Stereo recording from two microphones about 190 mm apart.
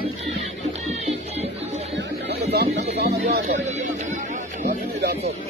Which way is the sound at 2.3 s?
60° right (ahead or behind).